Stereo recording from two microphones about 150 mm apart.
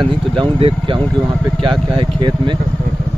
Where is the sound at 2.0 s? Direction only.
35° right (ahead or behind).